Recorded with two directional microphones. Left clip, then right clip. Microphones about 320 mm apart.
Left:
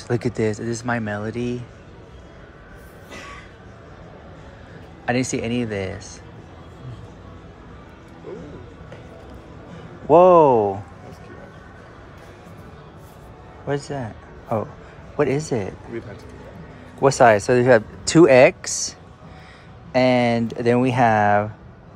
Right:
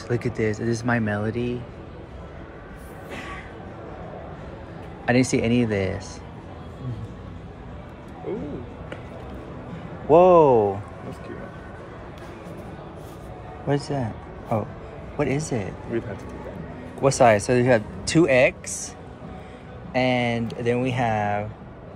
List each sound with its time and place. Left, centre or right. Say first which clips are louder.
0.1 s speech: left 3 dB; centre
0.8 s speech: even; centre
5.0 s speech: right 2 dB; centre
10.0 s speech: left 2 dB; centre
13.9 s a sound: right 1 dB; centre
15.5 s speech: left 2 dB; centre
17.0 s speech: left 3 dB; centre
18.5 s speech: left 5 dB; left
19.9 s speech: left 5 dB; centre